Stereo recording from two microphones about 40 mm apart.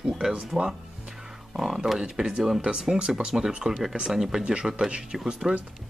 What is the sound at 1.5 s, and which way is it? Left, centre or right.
Speech, centre.